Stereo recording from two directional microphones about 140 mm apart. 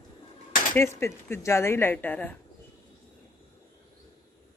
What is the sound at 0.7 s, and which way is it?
Speech, 20° left (ahead or behind).